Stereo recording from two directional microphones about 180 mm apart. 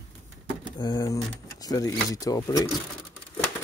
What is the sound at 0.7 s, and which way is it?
Speech, 20° left (ahead or behind).